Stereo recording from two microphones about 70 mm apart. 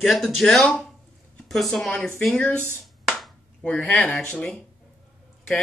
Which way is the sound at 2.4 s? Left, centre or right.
Left.